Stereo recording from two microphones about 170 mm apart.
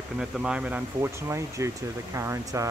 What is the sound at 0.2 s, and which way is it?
Speech, 5° right (ahead or behind).